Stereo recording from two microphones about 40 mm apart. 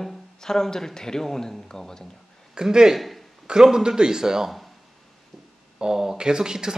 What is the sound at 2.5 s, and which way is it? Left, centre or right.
Speech, centre.